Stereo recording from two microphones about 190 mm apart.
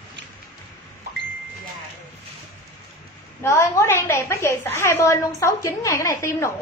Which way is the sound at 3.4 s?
15° left (ahead or behind).